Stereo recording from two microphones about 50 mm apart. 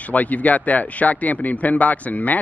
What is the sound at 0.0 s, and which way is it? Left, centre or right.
Speech, left.